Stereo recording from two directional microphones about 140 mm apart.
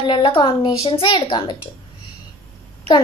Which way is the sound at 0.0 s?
35° left (ahead or behind).